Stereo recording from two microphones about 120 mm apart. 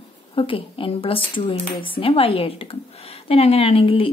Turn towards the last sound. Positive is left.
turn(degrees=50)  # may be behind; listen again after turning